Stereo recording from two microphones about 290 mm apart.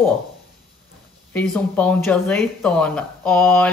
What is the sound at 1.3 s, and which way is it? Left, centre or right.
Speech, centre.